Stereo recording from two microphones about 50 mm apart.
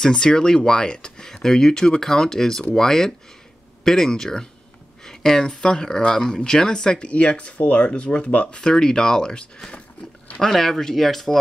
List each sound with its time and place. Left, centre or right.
0.0 s speech: centre
10.4 s speech: centre